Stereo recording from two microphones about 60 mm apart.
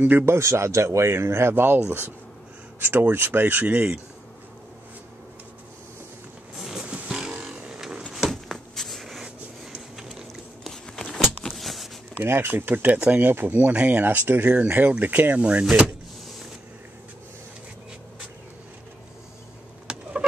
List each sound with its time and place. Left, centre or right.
0.2 s speech: right
1.5 s speech: right
6.5 s wild animals: centre
7.5 s vehicle: centre
8.3 s a sound: centre
10.7 s a sound: centre
12.2 s speech: right
19.9 s fowl: centre